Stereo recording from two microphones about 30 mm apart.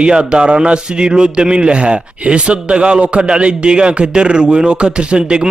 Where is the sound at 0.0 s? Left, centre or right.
Right.